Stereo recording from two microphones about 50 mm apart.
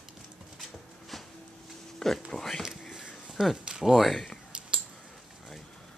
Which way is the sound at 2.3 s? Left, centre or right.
Centre.